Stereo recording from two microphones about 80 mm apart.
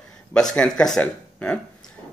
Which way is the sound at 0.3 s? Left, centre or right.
Centre.